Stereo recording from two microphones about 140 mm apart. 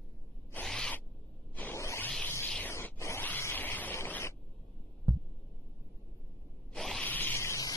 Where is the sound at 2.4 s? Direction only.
5° left (ahead or behind).